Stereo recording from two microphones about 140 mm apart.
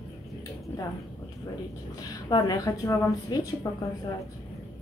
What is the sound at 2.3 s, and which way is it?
A woman's voice, 25° left (ahead or behind).